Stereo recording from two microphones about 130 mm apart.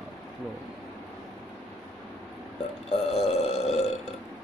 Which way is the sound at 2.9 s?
50° left (ahead or behind).